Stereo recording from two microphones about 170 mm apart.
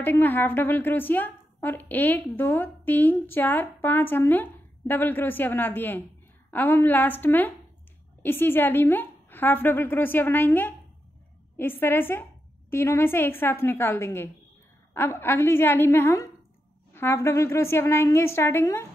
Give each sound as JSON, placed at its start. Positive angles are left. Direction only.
{"t": 0.0, "sound": "a woman's voice", "side_deg": 10}